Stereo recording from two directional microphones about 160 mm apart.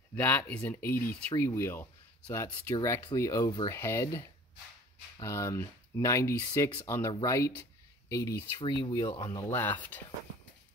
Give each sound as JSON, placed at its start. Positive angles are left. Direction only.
{"t": 0.1, "sound": "speech", "side_deg": 10}
{"t": 9.3, "sound": "speech", "side_deg": 15}